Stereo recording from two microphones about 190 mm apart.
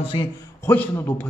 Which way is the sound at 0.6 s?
10° left (ahead or behind).